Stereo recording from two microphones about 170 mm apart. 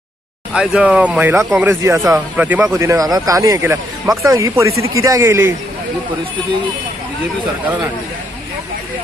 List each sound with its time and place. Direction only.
0.6 s speech: 5° right (ahead or behind)